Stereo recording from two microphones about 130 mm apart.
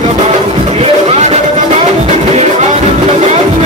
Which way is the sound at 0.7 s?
55° right (ahead or behind).